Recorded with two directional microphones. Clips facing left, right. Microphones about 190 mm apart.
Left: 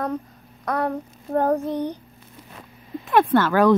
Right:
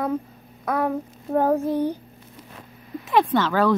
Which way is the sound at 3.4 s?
15° left (ahead or behind).